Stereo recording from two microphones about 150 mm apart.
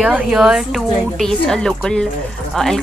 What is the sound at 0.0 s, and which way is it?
A woman's voice, 5° right (ahead or behind).